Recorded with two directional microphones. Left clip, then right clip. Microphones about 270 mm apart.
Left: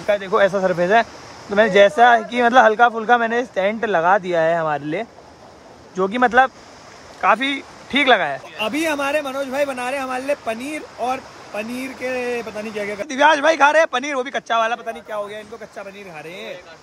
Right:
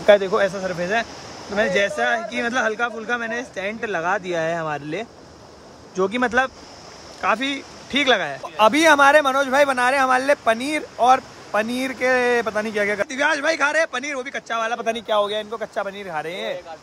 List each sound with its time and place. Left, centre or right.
0.3 s speech: centre
14.9 s speech: right; by 16.5 s centre